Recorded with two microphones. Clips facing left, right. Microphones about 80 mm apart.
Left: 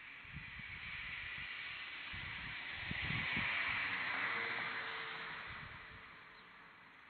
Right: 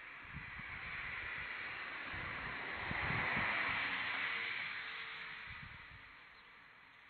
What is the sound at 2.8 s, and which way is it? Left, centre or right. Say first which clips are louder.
Vehicle: right 4 dB; right.